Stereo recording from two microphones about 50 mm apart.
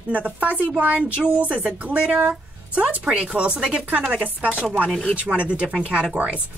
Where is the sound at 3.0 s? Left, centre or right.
Centre.